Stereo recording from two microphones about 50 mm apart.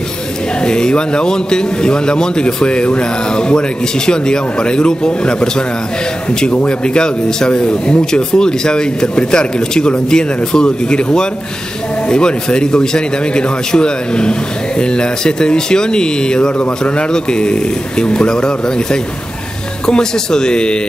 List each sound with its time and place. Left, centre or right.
0.6 s a man's voice: centre
6.5 s a man's voice: left